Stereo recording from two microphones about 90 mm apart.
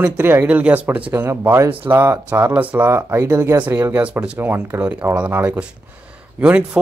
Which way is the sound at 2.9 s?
30° right (ahead or behind).